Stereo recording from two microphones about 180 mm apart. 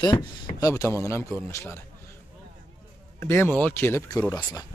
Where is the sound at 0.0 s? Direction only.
25° left (ahead or behind).